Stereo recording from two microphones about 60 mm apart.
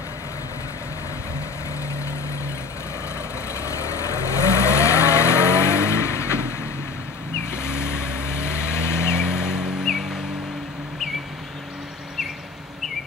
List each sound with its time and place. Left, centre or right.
3.5 s vehicle: left
9.1 s vehicle: centre